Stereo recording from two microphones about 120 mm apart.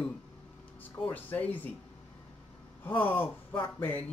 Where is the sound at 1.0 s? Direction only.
15° left (ahead or behind).